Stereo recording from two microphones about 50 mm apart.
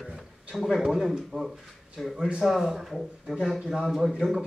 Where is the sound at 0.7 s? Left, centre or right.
Centre.